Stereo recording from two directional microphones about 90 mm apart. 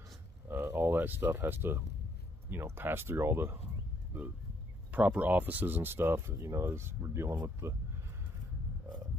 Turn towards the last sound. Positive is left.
turn(degrees=-30)  # may be behind; listen again after turning